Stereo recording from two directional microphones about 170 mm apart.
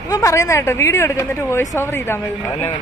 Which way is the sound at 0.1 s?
20° left (ahead or behind).